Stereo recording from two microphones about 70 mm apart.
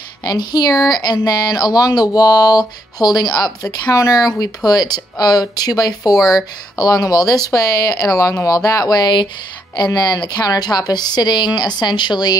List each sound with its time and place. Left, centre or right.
0.2 s speech: left
3.6 s speech: left
4.6 s a woman's voice: left
9.8 s a woman's voice: left